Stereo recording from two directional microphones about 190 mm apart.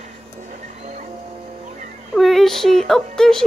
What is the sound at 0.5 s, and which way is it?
Music, 40° right (ahead or behind).